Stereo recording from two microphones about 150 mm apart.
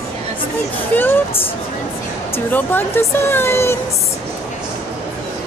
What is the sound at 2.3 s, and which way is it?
Speech, 15° left (ahead or behind).